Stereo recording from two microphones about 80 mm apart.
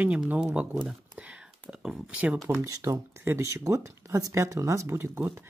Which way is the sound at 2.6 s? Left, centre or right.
Right.